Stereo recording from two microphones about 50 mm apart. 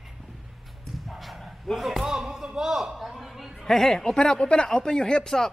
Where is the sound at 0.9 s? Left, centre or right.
Centre.